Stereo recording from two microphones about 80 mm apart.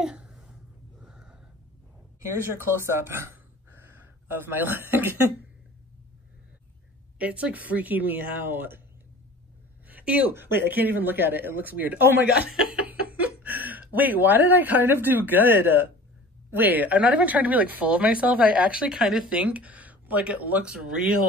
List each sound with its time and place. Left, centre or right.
0.0 s a sound: centre
2.5 s speech: right
7.2 s speech: centre
9.8 s speech: right